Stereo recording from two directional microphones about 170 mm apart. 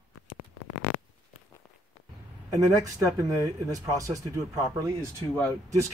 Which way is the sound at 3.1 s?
20° right (ahead or behind).